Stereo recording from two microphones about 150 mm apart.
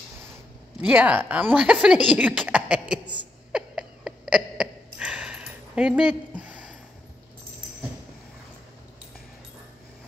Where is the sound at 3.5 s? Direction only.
5° right (ahead or behind).